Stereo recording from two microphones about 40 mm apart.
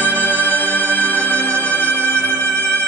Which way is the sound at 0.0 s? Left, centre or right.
Left.